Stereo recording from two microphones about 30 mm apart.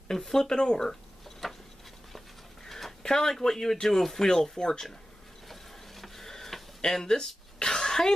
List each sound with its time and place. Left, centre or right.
0.1 s speech: centre
1.4 s a sound: centre
2.6 s a sound: centre
3.1 s speech: centre
4.6 s speech: left
5.5 s printer: centre
6.8 s speech: centre
7.5 s throat clearing: centre